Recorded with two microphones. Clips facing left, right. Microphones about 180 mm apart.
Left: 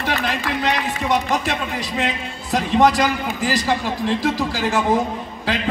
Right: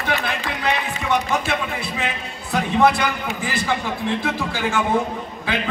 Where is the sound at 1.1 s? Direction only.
35° left (ahead or behind).